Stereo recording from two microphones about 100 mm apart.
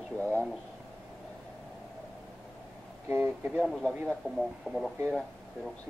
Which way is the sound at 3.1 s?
20° right (ahead or behind).